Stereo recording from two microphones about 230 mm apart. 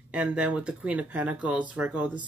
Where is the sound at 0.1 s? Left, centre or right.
Centre.